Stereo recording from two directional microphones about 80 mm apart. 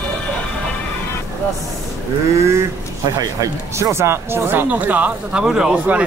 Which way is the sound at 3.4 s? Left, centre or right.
Right.